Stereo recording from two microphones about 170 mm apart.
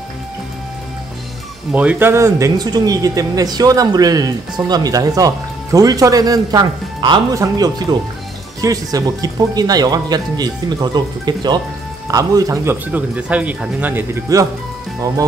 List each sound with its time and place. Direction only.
1.7 s speech: 10° right (ahead or behind)